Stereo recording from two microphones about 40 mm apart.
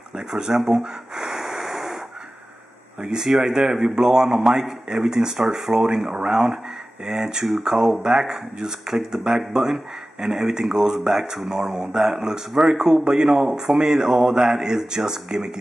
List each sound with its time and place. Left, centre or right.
0.3 s speech: centre
0.6 s gasp: centre
3.1 s a man's voice: centre